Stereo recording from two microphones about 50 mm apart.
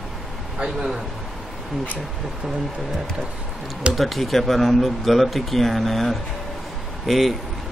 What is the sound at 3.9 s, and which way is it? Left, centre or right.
Speech, centre.